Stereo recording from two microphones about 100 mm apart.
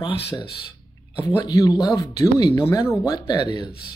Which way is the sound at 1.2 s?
35° left (ahead or behind).